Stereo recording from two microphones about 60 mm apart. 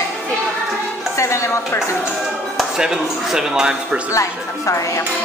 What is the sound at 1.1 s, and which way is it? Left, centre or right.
Speech, left.